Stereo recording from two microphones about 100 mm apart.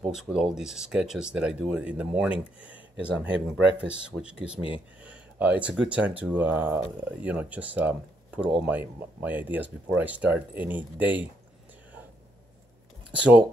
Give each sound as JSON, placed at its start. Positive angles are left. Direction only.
{"t": 0.1, "sound": "speech", "side_deg": -10}
{"t": 4.6, "sound": "speech", "side_deg": 60}
{"t": 5.0, "sound": "speech", "side_deg": -15}
{"t": 13.1, "sound": "speech", "side_deg": -15}